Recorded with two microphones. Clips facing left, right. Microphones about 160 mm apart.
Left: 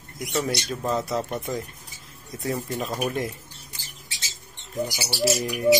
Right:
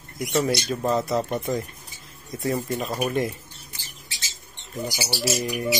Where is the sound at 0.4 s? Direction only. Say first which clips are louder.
Right 3 dB; 10° right (ahead or behind).